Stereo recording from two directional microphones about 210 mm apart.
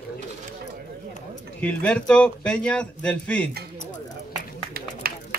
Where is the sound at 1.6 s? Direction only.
5° left (ahead or behind).